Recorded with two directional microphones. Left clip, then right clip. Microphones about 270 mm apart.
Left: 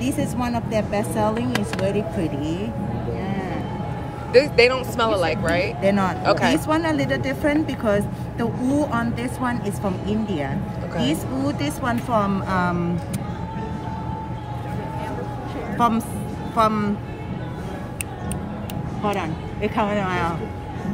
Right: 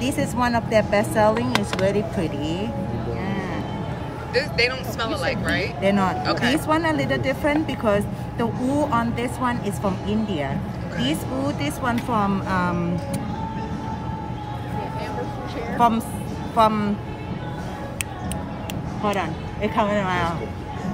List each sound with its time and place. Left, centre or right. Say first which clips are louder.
0.0 s speech: right 2 dB; centre
4.3 s speech: left 7 dB; centre
5.8 s a woman's voice: even; centre
6.2 s speech: left 4 dB; centre
6.7 s a woman's voice: even; centre
15.8 s a woman's voice: right 1 dB; centre
19.0 s a woman's voice: right 1 dB; centre